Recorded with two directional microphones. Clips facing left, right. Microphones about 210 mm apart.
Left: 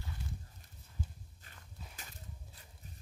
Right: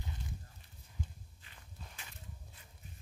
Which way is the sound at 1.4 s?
45° left (ahead or behind).